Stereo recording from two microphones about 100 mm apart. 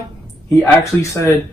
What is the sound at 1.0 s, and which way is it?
Speech, 35° left (ahead or behind).